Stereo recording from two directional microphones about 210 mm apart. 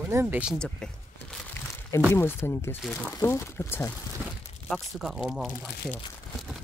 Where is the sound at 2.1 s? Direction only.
10° left (ahead or behind).